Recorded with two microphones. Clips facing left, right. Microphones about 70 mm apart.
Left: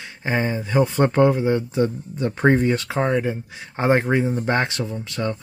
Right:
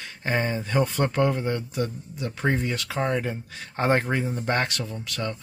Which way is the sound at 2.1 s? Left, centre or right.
Left.